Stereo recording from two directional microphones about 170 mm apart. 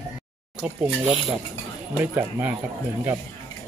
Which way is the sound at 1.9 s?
10° right (ahead or behind).